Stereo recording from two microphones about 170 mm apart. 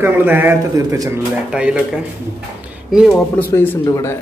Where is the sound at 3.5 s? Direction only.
15° left (ahead or behind).